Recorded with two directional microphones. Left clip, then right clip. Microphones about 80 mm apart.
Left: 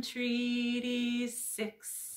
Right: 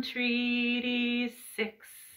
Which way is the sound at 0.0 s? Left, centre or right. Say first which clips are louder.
Right 4 dB; left.